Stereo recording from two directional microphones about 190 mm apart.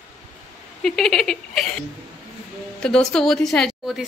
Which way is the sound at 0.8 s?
Centre (ahead or behind).